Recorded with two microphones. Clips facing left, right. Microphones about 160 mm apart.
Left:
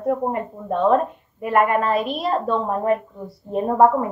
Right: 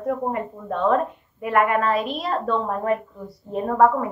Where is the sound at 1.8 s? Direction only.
15° left (ahead or behind).